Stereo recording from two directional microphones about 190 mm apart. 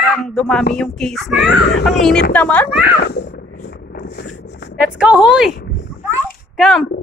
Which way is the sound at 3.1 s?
55° left (ahead or behind).